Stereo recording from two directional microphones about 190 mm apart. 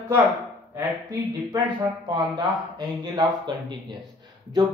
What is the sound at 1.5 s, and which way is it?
Speech, 20° right (ahead or behind).